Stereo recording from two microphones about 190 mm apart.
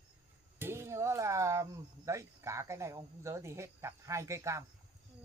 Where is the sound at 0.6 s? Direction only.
15° right (ahead or behind).